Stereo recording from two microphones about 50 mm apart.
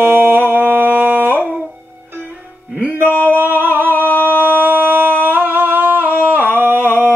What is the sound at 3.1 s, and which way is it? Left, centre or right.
Male singing, left.